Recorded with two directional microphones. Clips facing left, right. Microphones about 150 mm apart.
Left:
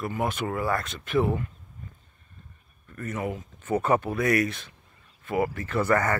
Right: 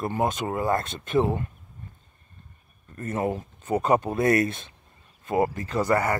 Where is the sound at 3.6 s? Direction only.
15° right (ahead or behind).